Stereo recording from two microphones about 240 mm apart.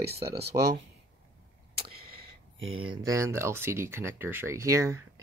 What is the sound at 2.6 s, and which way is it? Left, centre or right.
Speech, right.